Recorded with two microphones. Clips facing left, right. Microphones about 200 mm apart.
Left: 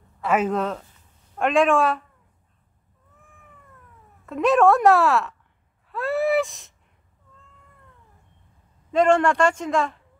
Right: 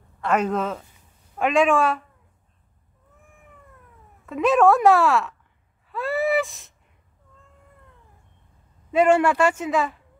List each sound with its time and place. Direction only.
0.2 s speech: 5° left (ahead or behind)
0.9 s a sound: 5° right (ahead or behind)
4.3 s speech: centre (ahead or behind)
5.9 s gasp: centre (ahead or behind)
8.9 s speech: 5° right (ahead or behind)